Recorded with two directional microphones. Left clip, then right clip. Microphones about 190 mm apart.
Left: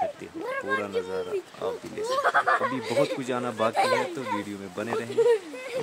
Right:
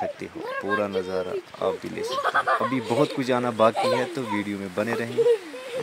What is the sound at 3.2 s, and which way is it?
Speech, 30° right (ahead or behind).